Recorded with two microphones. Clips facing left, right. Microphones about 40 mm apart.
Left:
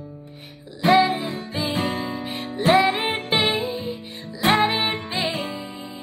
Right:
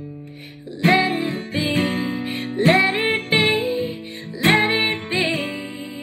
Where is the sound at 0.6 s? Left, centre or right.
Right.